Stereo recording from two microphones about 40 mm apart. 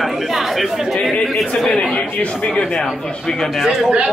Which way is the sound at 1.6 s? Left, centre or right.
Centre.